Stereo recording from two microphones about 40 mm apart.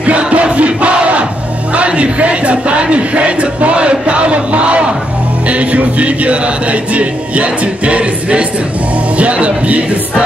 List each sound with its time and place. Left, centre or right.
0.0 s crowd: right
1.7 s speech: right
5.5 s music: right